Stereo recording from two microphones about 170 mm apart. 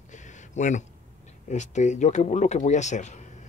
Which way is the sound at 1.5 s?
45° left (ahead or behind).